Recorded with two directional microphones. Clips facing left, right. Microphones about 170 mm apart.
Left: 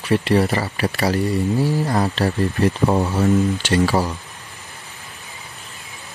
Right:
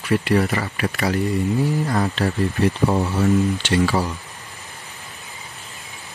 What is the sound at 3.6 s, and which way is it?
Speech, 45° left (ahead or behind).